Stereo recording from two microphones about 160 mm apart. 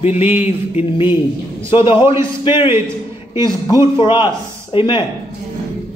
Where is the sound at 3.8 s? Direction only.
30° left (ahead or behind).